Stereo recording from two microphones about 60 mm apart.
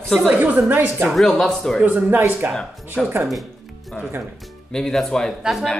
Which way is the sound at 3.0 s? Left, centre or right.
Centre.